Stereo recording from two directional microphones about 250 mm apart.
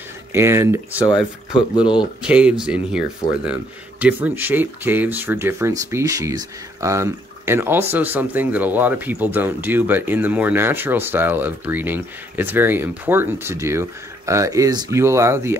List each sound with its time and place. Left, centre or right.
0.3 s speech: centre
1.8 s speech: centre
2.2 s speech: centre
4.0 s speech: centre